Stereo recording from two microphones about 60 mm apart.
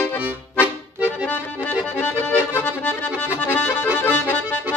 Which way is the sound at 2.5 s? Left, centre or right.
Left.